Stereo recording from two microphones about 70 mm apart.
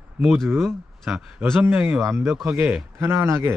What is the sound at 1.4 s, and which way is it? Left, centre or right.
Speech, right.